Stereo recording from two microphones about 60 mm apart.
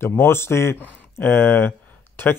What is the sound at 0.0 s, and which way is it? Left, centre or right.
Speech, left.